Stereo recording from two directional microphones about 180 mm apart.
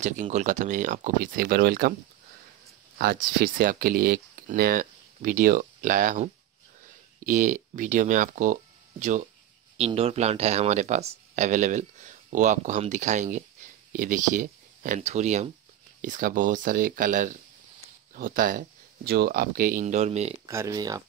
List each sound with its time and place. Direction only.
0.0 s speech: 40° right (ahead or behind); by 2.0 s 60° right (ahead or behind)
3.0 s speech: 55° right (ahead or behind)
7.2 s speech: 45° right (ahead or behind)
9.8 s speech: 35° right (ahead or behind)
20.4 s speech: 15° right (ahead or behind)